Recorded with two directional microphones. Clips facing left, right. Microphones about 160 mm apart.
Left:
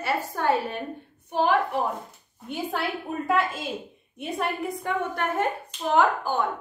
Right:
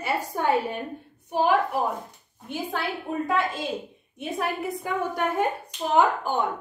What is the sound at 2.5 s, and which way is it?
A woman's voice, centre (ahead or behind).